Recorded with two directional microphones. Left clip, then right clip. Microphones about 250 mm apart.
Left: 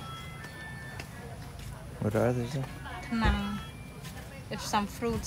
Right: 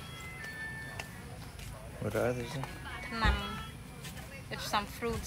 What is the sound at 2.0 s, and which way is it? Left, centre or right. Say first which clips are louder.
Speech: left 4 dB; left.